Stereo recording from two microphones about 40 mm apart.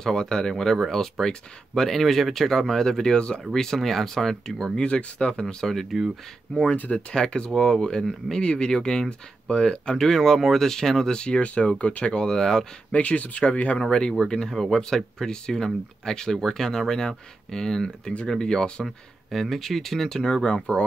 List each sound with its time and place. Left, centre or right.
0.0 s speech: centre
4.7 s speech: left
5.7 s speech: centre
6.5 s speech: left; by 11.1 s centre
11.1 s speech: left
12.9 s speech: left
13.8 s speech: centre
18.9 s speech: centre